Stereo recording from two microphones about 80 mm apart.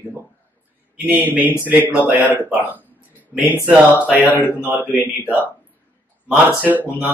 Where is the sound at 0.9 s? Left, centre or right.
Right.